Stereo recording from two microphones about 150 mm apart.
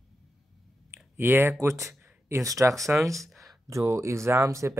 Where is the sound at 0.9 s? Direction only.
15° right (ahead or behind).